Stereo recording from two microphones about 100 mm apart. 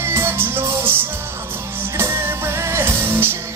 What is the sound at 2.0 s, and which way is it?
Music, 25° right (ahead or behind).